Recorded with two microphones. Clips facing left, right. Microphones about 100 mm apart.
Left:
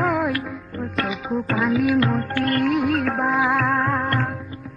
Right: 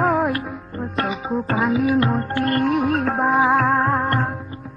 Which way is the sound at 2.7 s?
Centre (ahead or behind).